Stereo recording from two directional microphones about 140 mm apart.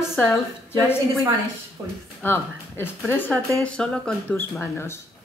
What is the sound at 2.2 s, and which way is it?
Speech, 15° left (ahead or behind).